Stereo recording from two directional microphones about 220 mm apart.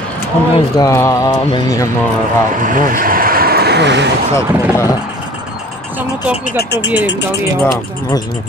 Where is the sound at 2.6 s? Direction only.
40° right (ahead or behind).